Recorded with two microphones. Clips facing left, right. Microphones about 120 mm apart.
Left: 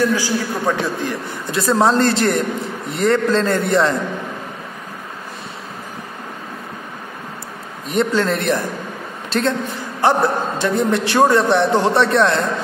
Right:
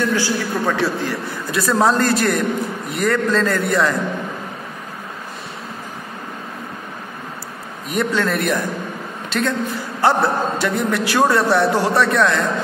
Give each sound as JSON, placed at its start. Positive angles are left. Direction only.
{"t": 0.1, "sound": "a man's voice", "side_deg": 15}
{"t": 7.9, "sound": "a man's voice", "side_deg": 25}